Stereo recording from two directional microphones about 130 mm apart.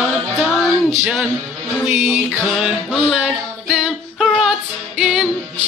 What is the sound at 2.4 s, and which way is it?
Music, centre (ahead or behind).